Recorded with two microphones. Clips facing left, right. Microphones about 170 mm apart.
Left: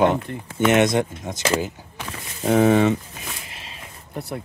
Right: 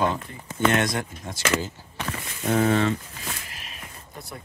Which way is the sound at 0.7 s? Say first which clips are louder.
Left 6 dB; 20° left (ahead or behind).